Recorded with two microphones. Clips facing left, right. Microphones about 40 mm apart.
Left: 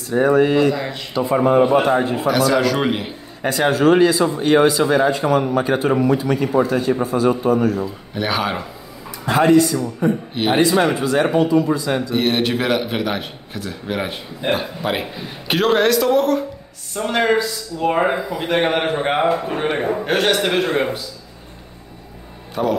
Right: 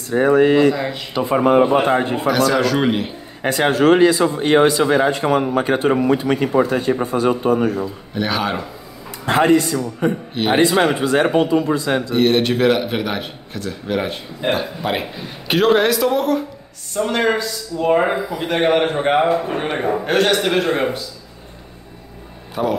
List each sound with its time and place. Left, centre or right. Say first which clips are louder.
0.1 s speech: right 1 dB; right
0.7 s speech: right 2 dB; centre
1.1 s speech: right 1 dB; right
2.2 s speech: even; centre
3.4 s speech: right 1 dB; right
4.9 s speech: even; right
8.1 s speech: even; centre
10.0 s a man's voice: left 1 dB; right
10.6 s speech: right 1 dB; right
12.1 s speech: right 4 dB; centre
22.6 s speech: even; centre